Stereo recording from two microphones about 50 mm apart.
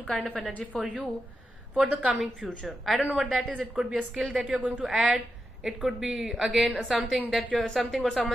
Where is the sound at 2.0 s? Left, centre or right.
Right.